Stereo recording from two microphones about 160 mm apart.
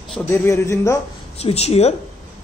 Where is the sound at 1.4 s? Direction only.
40° left (ahead or behind).